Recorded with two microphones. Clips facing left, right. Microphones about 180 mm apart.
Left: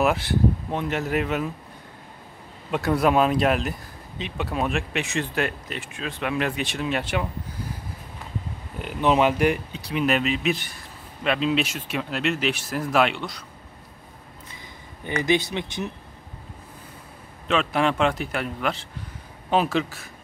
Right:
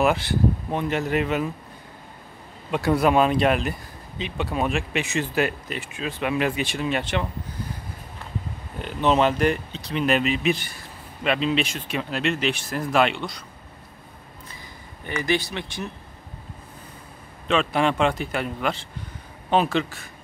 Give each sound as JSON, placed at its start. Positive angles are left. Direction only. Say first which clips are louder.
{"t": 0.0, "sound": "speech", "louder": "even", "side_deg": 0}
{"t": 2.7, "sound": "speech", "louder": "right 1 dB", "side_deg": 0}
{"t": 8.7, "sound": "speech", "louder": "even", "side_deg": 10}
{"t": 15.2, "sound": "speech", "louder": "left 2 dB", "side_deg": 20}
{"t": 17.5, "sound": "speech", "louder": "right 1 dB", "side_deg": 0}